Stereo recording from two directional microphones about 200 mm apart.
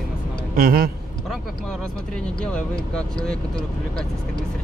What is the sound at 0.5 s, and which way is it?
Speech, 45° right (ahead or behind).